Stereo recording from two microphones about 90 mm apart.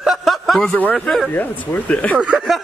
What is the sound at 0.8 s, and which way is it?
Speech, 15° left (ahead or behind).